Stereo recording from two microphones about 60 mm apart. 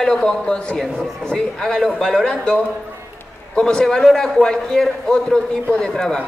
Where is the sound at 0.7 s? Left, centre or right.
Centre.